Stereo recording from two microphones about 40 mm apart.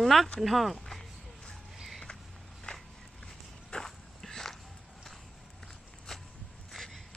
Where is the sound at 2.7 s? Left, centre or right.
Left.